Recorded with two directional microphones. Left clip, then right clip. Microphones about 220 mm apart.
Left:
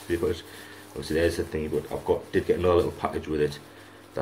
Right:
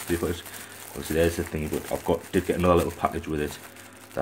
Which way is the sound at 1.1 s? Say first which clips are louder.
Even; 30° right (ahead or behind).